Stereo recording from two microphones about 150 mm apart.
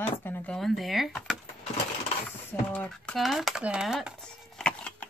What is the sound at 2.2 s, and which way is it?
Typing, 5° left (ahead or behind).